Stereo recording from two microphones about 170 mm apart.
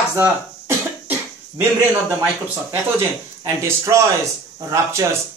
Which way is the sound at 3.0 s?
15° right (ahead or behind).